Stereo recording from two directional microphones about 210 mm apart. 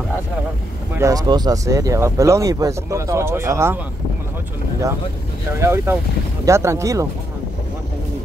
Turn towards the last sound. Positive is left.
turn(degrees=-15)  # may be behind; listen again after turning